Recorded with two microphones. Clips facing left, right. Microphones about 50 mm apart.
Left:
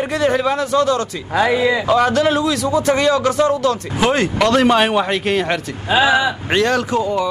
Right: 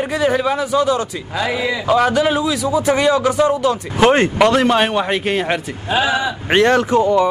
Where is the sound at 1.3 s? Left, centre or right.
Left.